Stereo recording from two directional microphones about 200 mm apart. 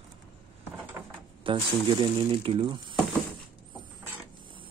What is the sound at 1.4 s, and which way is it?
Speech, 25° right (ahead or behind).